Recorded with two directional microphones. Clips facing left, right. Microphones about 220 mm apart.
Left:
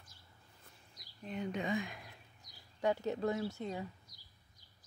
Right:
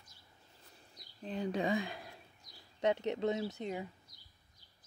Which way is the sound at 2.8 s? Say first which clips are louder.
Right 1 dB; 20° right (ahead or behind).